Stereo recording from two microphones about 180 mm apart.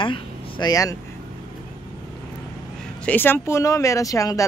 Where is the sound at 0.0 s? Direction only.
25° left (ahead or behind).